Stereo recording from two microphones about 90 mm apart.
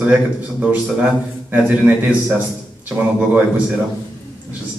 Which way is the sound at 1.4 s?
20° right (ahead or behind).